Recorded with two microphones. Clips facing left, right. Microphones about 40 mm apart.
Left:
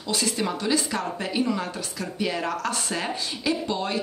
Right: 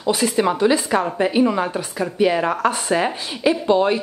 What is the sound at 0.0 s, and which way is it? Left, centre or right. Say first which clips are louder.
Speech: right 8 dB; right.